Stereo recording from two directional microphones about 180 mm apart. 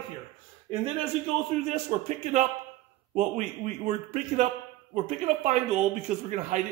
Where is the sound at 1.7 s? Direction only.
40° right (ahead or behind).